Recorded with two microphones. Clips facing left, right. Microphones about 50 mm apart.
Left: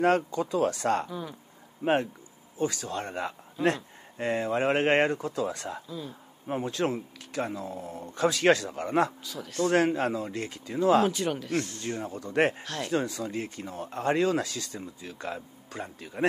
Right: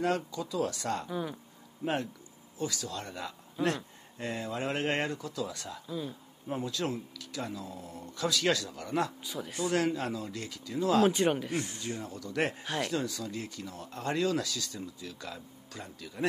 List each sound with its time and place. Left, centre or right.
0.0 s speech: left
1.0 s speech: centre
1.8 s speech: left
5.9 s speech: centre
6.4 s speech: left
9.2 s speech: centre
9.7 s speech: left
11.1 s speech: right
11.8 s speech: left